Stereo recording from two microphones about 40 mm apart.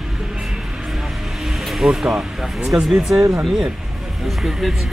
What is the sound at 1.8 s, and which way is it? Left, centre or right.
Speech, centre.